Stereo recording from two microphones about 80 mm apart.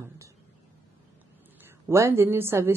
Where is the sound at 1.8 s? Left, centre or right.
Right.